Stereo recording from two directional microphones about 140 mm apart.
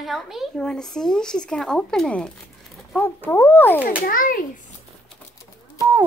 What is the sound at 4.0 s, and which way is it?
Speech, 85° left.